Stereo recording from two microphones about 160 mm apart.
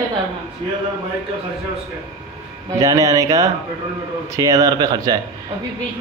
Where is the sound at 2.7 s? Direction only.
20° right (ahead or behind).